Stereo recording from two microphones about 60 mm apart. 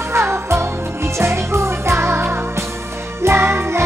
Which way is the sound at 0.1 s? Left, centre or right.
Right.